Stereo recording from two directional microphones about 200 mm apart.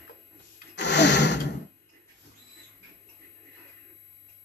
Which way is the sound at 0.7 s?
60° left (ahead or behind).